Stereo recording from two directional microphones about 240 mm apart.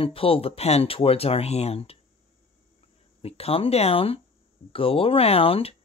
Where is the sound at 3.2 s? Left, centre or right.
Left.